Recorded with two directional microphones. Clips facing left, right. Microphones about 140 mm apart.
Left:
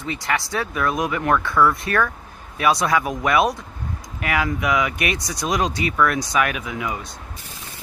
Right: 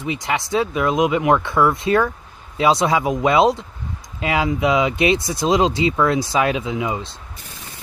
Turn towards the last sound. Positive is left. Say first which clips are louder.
# right 5 dB
turn(degrees=-25)  # may be behind; listen again after turning